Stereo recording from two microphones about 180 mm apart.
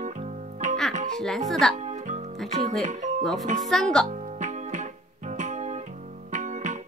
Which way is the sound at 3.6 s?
Centre (ahead or behind).